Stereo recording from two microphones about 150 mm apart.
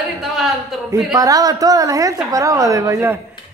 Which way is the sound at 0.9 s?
20° right (ahead or behind).